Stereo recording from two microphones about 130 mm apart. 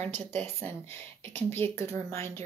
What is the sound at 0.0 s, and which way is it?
Speech, 15° left (ahead or behind).